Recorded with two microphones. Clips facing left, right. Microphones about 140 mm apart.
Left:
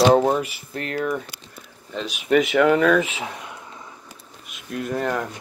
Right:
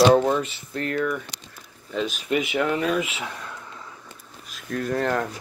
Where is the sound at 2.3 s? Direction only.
80° left.